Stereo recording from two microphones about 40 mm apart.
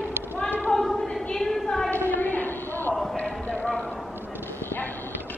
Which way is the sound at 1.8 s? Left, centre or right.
Left.